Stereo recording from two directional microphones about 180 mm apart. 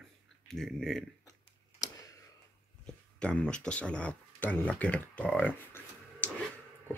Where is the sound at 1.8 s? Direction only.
20° left (ahead or behind).